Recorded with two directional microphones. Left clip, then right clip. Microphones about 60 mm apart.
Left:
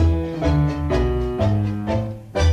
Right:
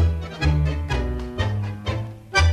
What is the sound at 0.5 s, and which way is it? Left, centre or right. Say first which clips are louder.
Music: left 6 dB; left.